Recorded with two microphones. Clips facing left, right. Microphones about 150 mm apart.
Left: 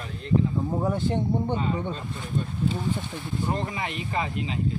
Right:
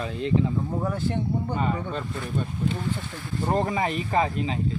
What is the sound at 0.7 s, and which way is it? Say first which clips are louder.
Speech: left 2 dB; 15° left (ahead or behind).